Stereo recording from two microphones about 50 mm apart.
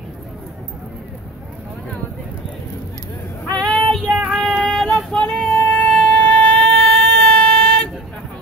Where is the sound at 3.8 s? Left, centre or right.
Centre.